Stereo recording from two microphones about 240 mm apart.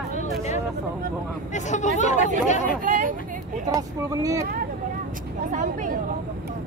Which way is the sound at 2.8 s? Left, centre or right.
Right.